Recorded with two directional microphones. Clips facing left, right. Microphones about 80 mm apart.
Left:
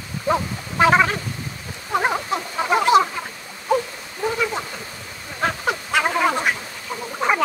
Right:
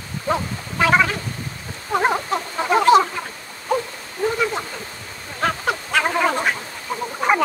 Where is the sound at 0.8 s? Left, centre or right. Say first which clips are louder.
Left 1 dB; left.